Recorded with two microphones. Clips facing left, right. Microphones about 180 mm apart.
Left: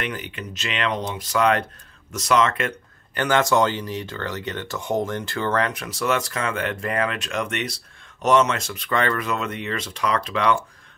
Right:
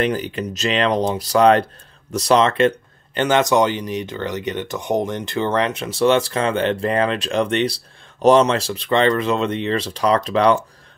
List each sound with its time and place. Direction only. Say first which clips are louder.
0.0 s speech: right 9 dB; 35° right (ahead or behind)